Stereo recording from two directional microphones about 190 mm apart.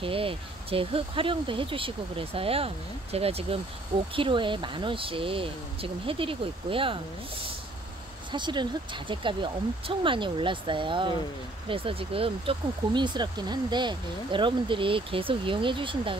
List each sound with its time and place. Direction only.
0.0 s speech: 30° right (ahead or behind)
8.3 s speech: 25° right (ahead or behind)